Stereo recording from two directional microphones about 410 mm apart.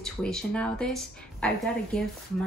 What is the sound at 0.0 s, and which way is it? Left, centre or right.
A woman's voice, centre.